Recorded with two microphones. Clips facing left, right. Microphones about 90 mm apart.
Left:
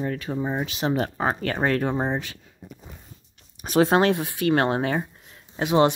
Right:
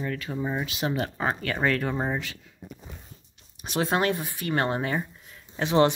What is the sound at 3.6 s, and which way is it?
Speech, 40° left (ahead or behind).